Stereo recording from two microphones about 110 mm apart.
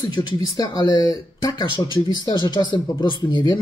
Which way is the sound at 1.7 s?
45° left (ahead or behind).